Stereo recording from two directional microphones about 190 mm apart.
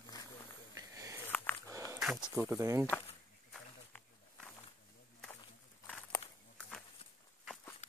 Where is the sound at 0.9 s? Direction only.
15° right (ahead or behind).